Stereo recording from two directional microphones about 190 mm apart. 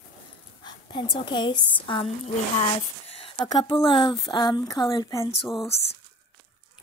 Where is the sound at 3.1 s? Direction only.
30° left (ahead or behind).